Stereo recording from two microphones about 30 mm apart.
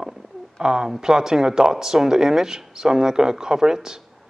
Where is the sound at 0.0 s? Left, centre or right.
Right.